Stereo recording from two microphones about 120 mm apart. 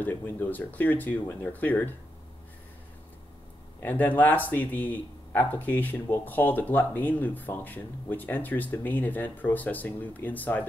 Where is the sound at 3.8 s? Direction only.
15° left (ahead or behind).